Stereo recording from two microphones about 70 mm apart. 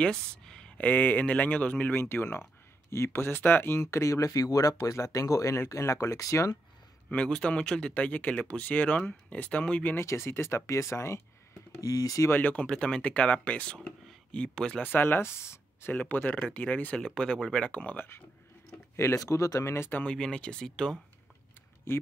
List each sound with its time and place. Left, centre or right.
0.0 s a sound: centre
0.8 s speech: left
3.8 s speech: left
7.1 s speech: centre
9.9 s speech: left
11.8 s speech: left
12.3 s speech: left
12.6 s speech: centre
14.8 s speech: left
15.9 s speech: left
18.9 s speech: left
20.1 s speech: centre
21.9 s speech: left